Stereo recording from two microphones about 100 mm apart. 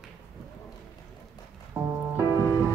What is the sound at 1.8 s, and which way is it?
Music, 25° right (ahead or behind).